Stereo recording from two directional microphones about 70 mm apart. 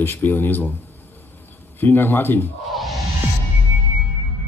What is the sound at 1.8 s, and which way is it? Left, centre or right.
Speech, left.